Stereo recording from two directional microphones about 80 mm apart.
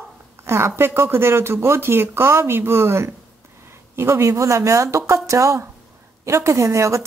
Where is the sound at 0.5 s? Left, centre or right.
Right.